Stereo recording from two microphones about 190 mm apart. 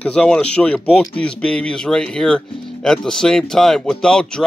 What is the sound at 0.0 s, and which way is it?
A man's voice, 5° left (ahead or behind).